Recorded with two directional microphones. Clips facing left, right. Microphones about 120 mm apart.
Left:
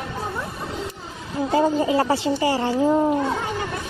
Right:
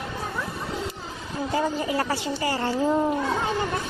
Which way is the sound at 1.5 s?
25° left (ahead or behind).